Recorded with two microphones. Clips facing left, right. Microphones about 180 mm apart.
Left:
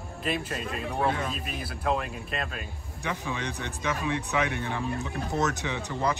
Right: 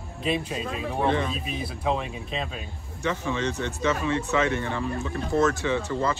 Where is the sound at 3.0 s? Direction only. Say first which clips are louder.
Right 6 dB; 15° left (ahead or behind).